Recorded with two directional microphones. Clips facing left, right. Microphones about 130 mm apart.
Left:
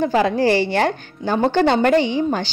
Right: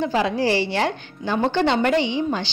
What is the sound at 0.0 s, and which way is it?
A woman's voice, 50° left (ahead or behind).